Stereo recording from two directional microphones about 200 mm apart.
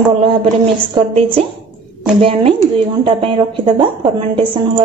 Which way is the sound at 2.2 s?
30° right (ahead or behind).